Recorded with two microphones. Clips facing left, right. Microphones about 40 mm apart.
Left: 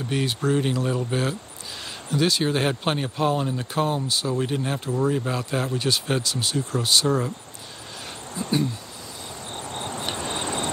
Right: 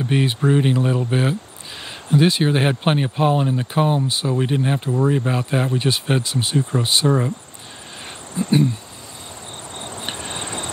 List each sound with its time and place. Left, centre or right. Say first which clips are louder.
0.0 s speech: right 5 dB; right
8.4 s speech: right 7 dB; right
10.1 s vehicle: left 1 dB; centre